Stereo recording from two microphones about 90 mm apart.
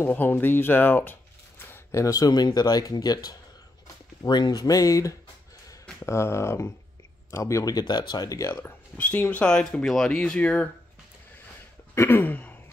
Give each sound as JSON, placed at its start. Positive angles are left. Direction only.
{"t": 0.0, "sound": "speech", "side_deg": 25}
{"t": 7.8, "sound": "speech", "side_deg": 60}
{"t": 8.5, "sound": "speech", "side_deg": 20}
{"t": 11.9, "sound": "speech", "side_deg": 25}